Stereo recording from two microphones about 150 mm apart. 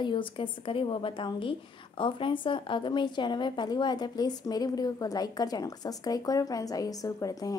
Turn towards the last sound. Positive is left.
turn(degrees=20)  # may be behind; listen again after turning